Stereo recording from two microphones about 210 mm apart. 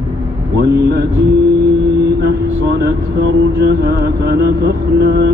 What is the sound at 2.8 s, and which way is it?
Mantra, 55° right (ahead or behind).